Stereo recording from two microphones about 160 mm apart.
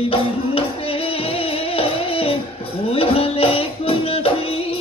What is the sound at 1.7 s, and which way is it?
Music, 35° left (ahead or behind).